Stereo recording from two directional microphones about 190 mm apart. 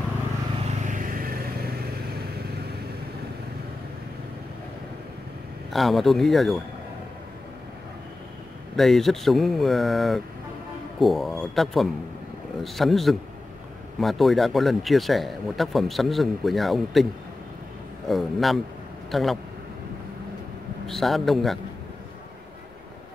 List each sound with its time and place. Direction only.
0.7 s vehicle: 45° right (ahead or behind)
5.7 s speech: centre (ahead or behind)
8.7 s speech: centre (ahead or behind)
20.8 s speech: centre (ahead or behind)